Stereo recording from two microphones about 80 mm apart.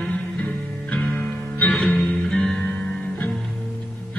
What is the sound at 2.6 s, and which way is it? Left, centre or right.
Music, centre.